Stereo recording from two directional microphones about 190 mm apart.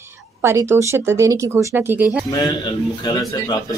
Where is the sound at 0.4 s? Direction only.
15° right (ahead or behind).